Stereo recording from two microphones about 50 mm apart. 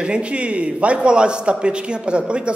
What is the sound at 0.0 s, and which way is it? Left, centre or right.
A man's voice, right.